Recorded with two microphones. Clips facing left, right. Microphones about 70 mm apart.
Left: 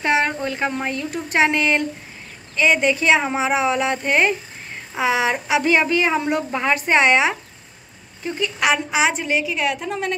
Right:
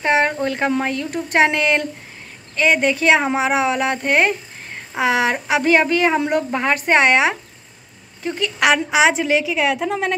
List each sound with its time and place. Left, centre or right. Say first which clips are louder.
0.0 s speech: right 2 dB; right
0.5 s speech: right 4 dB; right
2.5 s speech: right 1 dB; right
5.3 s speech: right 2 dB; right
8.2 s a woman's voice: right 3 dB; right